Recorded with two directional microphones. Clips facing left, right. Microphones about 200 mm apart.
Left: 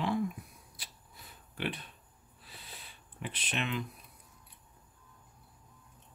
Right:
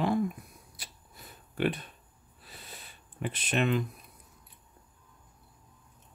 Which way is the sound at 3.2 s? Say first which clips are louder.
Right 8 dB; 45° right (ahead or behind).